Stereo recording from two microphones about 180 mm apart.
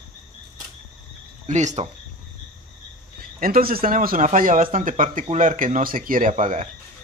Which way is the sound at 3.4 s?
55° right (ahead or behind).